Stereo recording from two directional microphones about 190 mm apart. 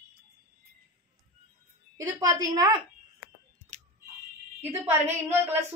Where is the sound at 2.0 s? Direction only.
20° right (ahead or behind).